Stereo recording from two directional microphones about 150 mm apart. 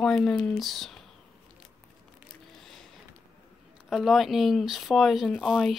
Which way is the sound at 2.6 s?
Centre (ahead or behind).